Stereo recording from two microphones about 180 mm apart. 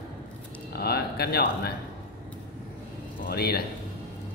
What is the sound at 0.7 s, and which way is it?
Speech, 60° left (ahead or behind).